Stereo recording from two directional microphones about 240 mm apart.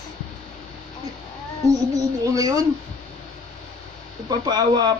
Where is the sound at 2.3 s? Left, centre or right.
Centre.